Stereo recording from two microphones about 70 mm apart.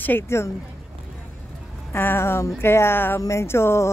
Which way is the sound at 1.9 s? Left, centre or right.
Left.